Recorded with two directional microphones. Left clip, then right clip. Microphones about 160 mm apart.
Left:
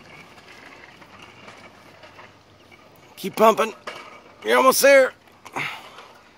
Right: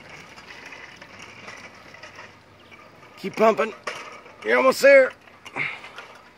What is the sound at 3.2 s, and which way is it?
A man's voice, 15° left (ahead or behind).